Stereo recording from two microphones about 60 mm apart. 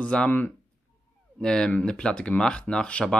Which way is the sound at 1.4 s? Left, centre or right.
Centre.